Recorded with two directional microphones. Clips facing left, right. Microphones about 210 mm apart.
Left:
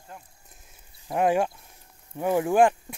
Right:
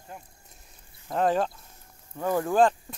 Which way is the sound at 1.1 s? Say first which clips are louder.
Left 2 dB; 10° left (ahead or behind).